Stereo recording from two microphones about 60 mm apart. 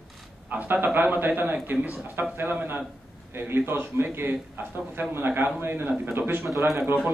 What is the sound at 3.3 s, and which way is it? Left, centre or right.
A man's voice, right.